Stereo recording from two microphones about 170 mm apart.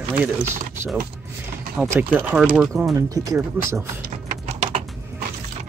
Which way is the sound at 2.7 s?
20° right (ahead or behind).